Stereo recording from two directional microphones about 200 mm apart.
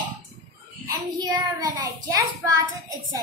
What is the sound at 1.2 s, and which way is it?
Child singing, 20° right (ahead or behind).